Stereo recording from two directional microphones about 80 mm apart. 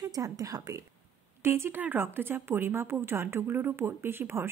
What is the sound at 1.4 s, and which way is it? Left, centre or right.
A woman's voice, right.